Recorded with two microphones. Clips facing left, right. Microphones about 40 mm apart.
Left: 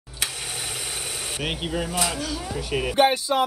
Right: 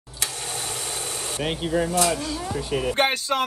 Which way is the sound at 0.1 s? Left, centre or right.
Centre.